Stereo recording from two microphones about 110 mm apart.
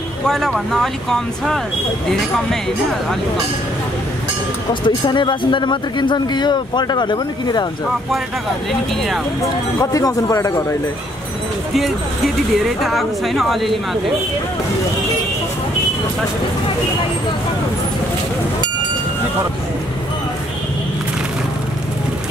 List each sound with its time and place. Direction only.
0.3 s speech: 5° left (ahead or behind)
4.8 s speech: 45° left (ahead or behind)
9.8 s speech: 30° left (ahead or behind)
12.6 s speech: centre (ahead or behind)